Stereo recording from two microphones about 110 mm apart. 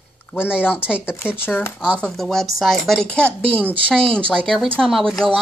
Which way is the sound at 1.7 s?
10° right (ahead or behind).